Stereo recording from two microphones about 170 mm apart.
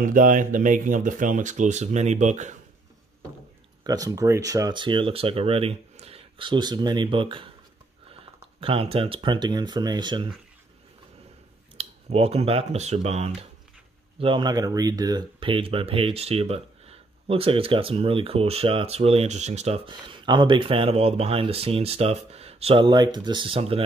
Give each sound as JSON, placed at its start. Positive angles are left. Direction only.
{"t": 0.0, "sound": "speech", "side_deg": -50}
{"t": 3.8, "sound": "speech", "side_deg": -20}
{"t": 11.7, "sound": "speech", "side_deg": -35}
{"t": 19.9, "sound": "speech", "side_deg": -25}